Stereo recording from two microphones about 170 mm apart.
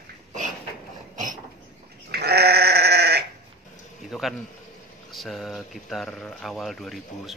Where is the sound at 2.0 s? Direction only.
70° right (ahead or behind).